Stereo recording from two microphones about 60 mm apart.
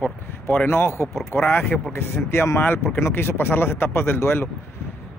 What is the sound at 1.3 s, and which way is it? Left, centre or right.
Speech, left.